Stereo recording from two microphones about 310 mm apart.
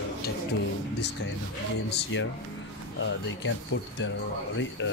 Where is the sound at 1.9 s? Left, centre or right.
Left.